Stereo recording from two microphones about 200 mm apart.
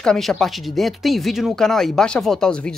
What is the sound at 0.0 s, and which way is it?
Speech, 5° left (ahead or behind).